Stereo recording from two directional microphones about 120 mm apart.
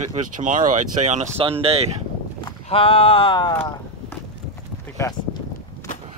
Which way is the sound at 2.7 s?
50° left (ahead or behind).